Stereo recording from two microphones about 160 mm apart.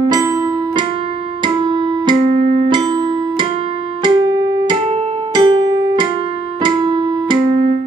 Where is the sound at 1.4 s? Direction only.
30° right (ahead or behind).